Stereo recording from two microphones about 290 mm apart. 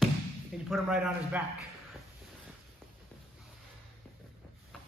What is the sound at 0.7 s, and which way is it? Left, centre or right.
Speech, centre.